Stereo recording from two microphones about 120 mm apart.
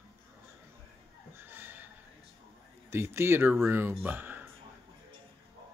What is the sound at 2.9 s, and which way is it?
Speech, 20° right (ahead or behind).